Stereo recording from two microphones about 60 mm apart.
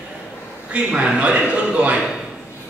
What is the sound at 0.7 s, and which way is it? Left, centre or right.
Speech, centre.